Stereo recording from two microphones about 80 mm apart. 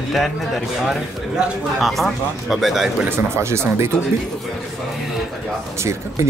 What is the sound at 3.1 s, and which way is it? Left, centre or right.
Speech, right.